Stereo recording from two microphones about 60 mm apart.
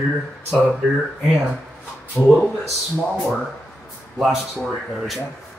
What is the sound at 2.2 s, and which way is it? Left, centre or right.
Speech, left.